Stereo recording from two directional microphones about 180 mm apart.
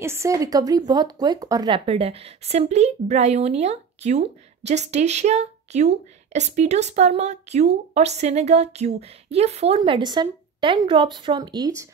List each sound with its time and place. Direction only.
0.0 s speech: 15° right (ahead or behind)